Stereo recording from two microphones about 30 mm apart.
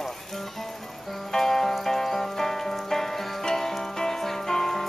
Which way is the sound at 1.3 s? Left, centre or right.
Centre.